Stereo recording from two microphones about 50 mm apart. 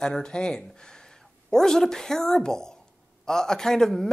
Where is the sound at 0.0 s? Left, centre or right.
Centre.